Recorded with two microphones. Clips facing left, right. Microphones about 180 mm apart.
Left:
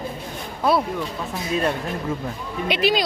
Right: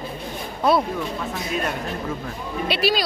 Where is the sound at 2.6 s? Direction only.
20° left (ahead or behind).